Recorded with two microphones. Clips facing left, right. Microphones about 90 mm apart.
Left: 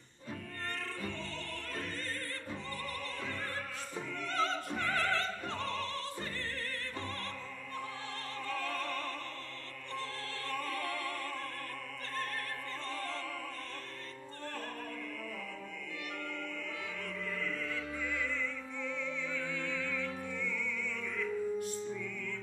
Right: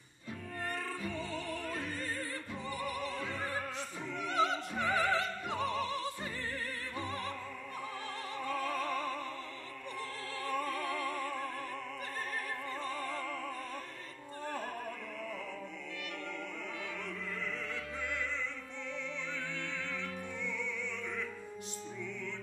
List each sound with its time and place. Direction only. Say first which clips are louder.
1.0 s music: right 3 dB; 10° right (ahead or behind)
8.5 s opera: right 3 dB; 15° right (ahead or behind)
10.4 s opera: right 3 dB; 10° right (ahead or behind)
12.8 s opera: right 1 dB; 10° right (ahead or behind)
19.3 s music: left 3 dB; 25° right (ahead or behind)